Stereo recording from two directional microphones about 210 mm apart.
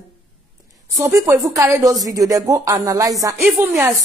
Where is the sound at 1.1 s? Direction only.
15° right (ahead or behind).